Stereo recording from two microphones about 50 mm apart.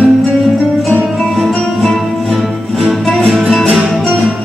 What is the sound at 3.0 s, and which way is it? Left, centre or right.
Music, centre.